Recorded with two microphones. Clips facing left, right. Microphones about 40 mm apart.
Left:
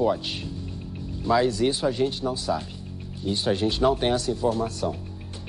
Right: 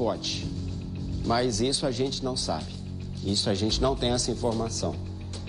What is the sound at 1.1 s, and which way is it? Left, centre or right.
Music, centre.